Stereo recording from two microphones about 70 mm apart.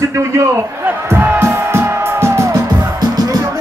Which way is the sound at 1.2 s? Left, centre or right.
Right.